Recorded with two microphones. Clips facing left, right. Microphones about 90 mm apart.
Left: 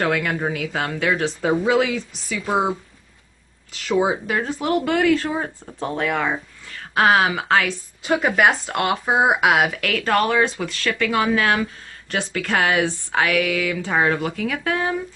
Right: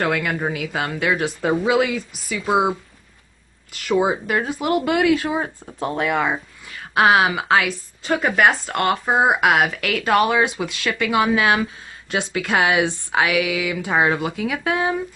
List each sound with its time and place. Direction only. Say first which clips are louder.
0.0 s speech: even; centre (ahead or behind)
3.7 s speech: right 1 dB; 5° right (ahead or behind)